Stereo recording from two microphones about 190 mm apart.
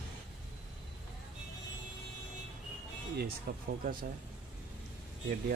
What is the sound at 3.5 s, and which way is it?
Speech, 55° right (ahead or behind).